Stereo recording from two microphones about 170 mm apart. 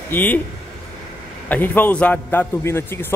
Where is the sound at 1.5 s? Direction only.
10° left (ahead or behind).